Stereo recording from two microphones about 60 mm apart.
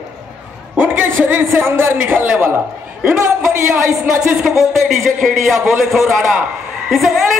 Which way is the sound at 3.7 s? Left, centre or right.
Centre.